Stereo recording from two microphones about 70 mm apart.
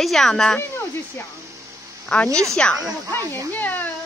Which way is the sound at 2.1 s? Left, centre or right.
Centre.